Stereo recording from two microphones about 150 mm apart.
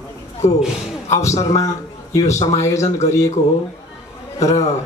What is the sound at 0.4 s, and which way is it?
Speech, 20° left (ahead or behind).